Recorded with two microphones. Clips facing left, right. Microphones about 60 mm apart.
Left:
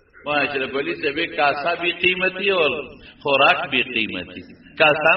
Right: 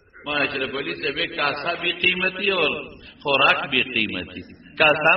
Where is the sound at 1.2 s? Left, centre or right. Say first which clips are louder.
Left 5 dB; left.